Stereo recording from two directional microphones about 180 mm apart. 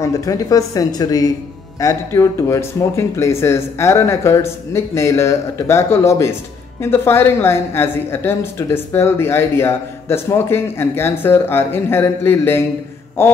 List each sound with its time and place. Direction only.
0.0 s a woman's voice: 20° left (ahead or behind)